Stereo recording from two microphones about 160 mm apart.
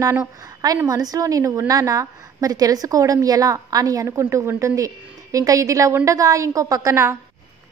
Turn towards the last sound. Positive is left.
turn(degrees=-20)  # may be behind; listen again after turning